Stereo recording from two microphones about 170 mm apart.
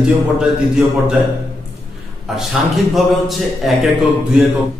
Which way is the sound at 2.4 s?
Centre (ahead or behind).